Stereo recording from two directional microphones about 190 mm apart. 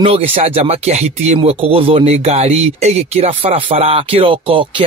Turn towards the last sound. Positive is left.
turn(degrees=-25)  # may be behind; listen again after turning